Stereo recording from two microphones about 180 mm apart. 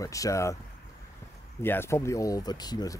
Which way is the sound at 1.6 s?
15° left (ahead or behind).